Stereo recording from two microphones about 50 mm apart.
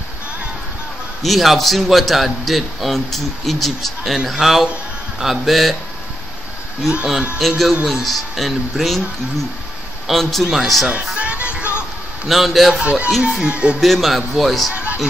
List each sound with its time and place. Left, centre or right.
1.2 s a man's voice: centre
7.3 s a man's voice: centre
10.0 s a man's voice: centre
10.9 s music: right
12.3 s a man's voice: centre
12.8 s speech: right
13.7 s a man's voice: centre
14.7 s a sound: right